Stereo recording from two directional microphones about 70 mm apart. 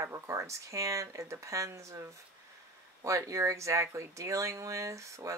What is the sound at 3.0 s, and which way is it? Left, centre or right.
Speech, right.